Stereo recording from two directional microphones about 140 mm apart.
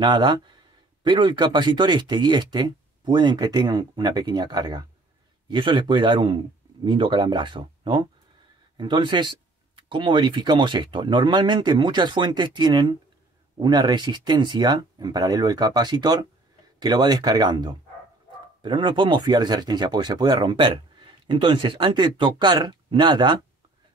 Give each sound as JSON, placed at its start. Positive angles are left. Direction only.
{"t": 0.0, "sound": "speech", "side_deg": -35}